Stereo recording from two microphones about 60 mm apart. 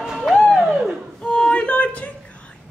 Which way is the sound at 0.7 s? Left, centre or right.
Centre.